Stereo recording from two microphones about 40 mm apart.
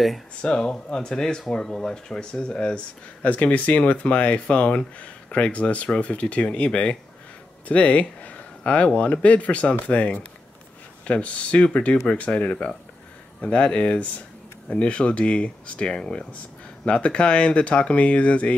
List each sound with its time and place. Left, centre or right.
0.4 s speech: left
3.2 s speech: left
15.9 s speech: centre
16.8 s speech: left